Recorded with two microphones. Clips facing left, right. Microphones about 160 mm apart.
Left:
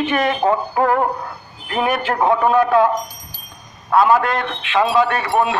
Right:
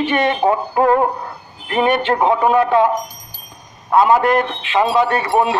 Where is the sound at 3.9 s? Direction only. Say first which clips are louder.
Right 2 dB; 20° right (ahead or behind).